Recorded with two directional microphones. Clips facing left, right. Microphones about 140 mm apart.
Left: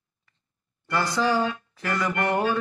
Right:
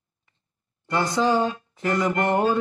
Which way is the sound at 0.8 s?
20° right (ahead or behind).